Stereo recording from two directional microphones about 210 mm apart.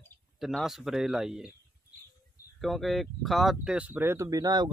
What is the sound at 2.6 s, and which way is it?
Speech, centre (ahead or behind).